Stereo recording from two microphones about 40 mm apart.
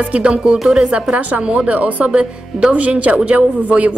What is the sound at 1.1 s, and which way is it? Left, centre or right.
Speech, right.